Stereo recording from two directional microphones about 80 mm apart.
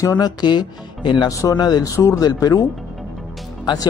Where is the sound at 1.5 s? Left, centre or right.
Left.